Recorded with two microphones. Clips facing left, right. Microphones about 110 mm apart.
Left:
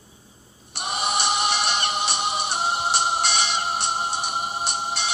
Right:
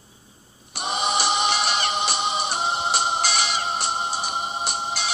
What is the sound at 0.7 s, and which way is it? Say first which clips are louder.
Music: right 2 dB; 5° left (ahead or behind).